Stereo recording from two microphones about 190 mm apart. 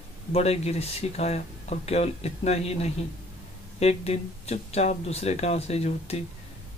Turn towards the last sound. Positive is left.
turn(degrees=35)  # may be behind; listen again after turning